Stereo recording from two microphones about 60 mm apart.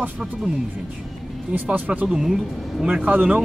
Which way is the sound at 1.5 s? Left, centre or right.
Right.